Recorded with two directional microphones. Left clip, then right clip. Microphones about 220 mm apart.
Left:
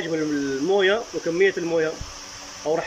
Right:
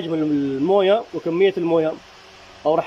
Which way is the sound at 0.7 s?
10° right (ahead or behind).